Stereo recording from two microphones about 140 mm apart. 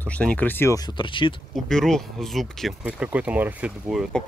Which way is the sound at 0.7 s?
35° left (ahead or behind).